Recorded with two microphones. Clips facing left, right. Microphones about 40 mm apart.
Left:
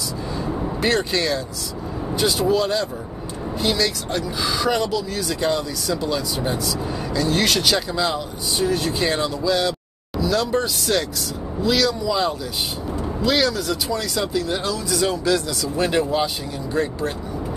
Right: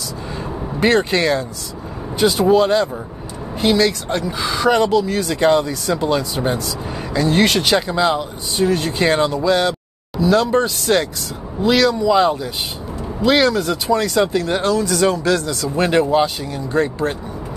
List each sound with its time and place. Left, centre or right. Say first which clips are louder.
0.4 s vehicle: right 4 dB; right
2.1 s speech: right 5 dB; centre
2.4 s speech: right 8 dB; right
15.4 s speech: right 3 dB; right